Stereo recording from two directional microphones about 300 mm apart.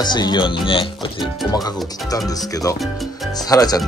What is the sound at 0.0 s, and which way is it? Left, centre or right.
Speech, centre.